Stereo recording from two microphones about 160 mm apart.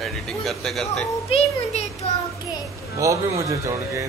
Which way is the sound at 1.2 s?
40° left (ahead or behind).